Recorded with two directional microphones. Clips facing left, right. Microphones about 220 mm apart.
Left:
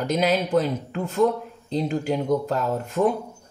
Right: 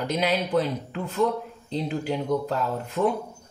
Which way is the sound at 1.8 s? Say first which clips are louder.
Left 3 dB; 45° left (ahead or behind).